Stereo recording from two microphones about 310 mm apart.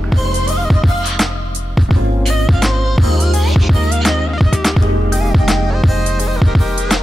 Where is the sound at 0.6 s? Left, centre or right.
Centre.